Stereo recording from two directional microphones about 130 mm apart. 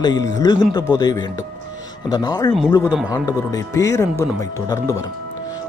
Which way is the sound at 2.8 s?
10° right (ahead or behind).